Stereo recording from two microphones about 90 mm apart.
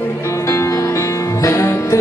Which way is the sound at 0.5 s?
35° left (ahead or behind).